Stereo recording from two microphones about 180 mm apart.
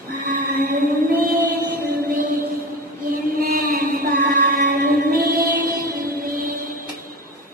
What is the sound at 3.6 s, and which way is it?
Music, 55° right (ahead or behind).